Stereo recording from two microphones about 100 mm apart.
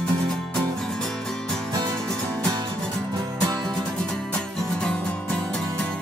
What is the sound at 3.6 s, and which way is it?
Music, 5° left (ahead or behind).